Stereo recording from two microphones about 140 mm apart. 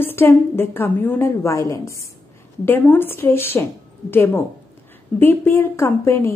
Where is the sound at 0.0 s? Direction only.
15° left (ahead or behind).